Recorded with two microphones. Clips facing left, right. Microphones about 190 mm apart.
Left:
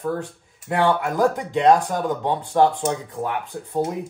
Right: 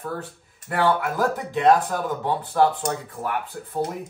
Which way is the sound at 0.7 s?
20° left (ahead or behind).